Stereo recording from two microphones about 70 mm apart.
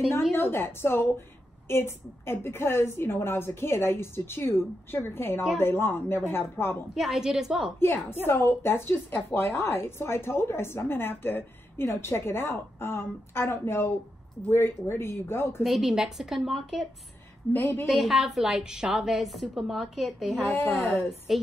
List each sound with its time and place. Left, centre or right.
0.3 s a woman's voice: left
7.0 s a woman's voice: centre
7.8 s a woman's voice: left
15.6 s a woman's voice: centre
17.5 s a woman's voice: left
17.8 s a woman's voice: centre